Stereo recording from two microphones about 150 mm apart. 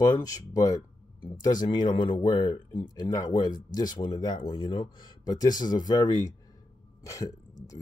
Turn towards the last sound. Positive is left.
turn(degrees=20)  # may be behind; listen again after turning